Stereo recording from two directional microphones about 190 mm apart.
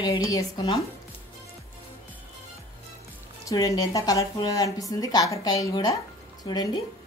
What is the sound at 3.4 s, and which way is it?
Speech, 20° left (ahead or behind).